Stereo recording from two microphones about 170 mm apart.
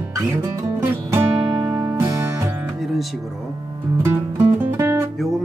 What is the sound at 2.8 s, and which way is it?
Music, centre (ahead or behind).